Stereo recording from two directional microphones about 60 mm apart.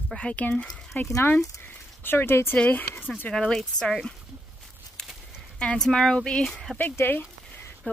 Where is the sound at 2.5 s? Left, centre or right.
Left; by 4.1 s centre.